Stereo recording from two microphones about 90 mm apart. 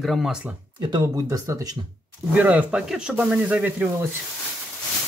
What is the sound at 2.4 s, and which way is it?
Speech, 15° right (ahead or behind).